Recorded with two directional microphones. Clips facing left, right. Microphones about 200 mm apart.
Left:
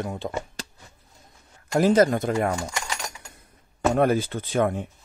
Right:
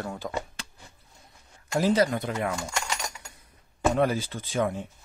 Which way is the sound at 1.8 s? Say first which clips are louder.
Left 5 dB; 50° left (ahead or behind).